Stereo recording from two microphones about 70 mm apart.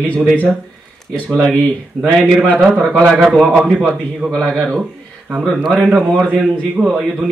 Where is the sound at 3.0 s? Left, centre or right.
Centre.